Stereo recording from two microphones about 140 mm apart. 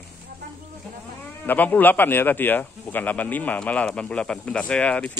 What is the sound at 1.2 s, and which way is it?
Speech, 10° left (ahead or behind).